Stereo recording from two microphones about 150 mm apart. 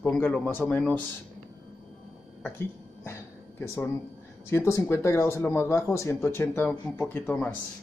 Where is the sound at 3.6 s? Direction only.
20° left (ahead or behind).